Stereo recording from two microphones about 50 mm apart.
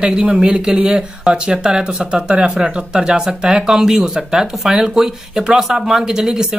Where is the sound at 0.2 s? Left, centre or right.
Centre.